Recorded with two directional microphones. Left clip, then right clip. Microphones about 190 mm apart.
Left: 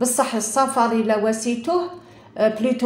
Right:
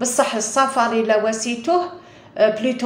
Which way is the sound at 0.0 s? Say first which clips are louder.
Right 2 dB; 35° left (ahead or behind).